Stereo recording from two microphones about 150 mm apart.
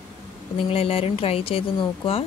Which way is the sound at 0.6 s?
40° left (ahead or behind).